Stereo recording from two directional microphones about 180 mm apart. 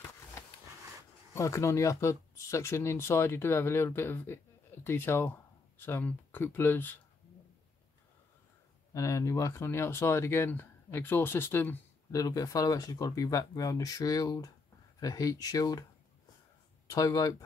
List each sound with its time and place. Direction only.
1.3 s speech: 15° left (ahead or behind)
8.9 s speech: 20° left (ahead or behind)
16.9 s speech: 20° left (ahead or behind)